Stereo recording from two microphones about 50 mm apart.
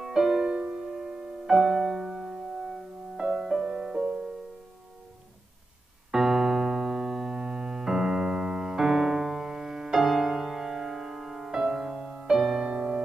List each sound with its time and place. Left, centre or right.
0.0 s music: centre
6.1 s keyboard: centre
12.6 s music: centre